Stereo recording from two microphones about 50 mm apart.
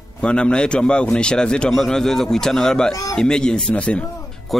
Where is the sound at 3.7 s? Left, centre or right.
Left.